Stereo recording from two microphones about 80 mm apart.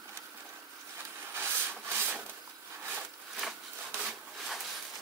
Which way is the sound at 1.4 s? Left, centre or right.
Right.